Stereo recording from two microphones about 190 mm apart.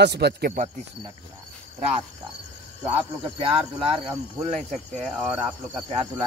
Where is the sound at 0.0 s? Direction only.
60° right (ahead or behind).